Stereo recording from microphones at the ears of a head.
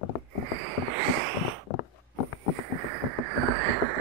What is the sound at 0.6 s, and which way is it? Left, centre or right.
Frog, right.